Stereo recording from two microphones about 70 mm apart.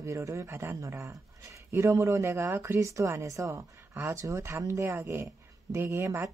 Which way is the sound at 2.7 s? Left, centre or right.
Right.